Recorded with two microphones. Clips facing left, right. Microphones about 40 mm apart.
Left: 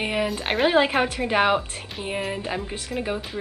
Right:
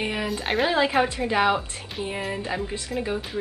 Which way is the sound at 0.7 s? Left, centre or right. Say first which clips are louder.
Left 3 dB; left.